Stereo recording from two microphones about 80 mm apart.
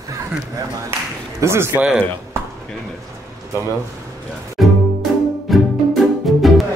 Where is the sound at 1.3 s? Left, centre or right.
Right.